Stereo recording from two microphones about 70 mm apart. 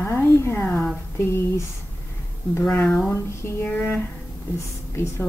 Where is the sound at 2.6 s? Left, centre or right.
Left.